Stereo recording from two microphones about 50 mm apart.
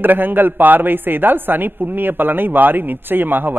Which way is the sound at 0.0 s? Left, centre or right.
Right.